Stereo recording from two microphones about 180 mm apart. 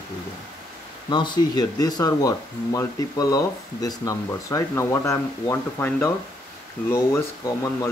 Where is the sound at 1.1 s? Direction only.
25° left (ahead or behind).